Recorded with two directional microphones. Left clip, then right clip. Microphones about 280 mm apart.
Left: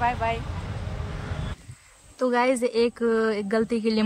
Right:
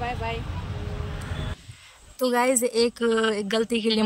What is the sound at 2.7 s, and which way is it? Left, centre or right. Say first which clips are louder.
Speech: even; right.